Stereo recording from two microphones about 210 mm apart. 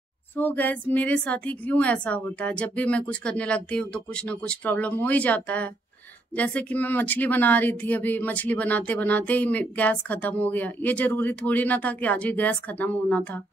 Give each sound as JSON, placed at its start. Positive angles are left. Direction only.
{"t": 0.4, "sound": "speech", "side_deg": 10}